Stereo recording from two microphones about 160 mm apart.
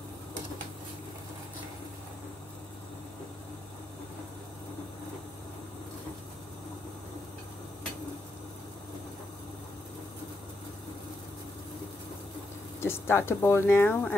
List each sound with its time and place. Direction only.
12.8 s speech: 15° left (ahead or behind)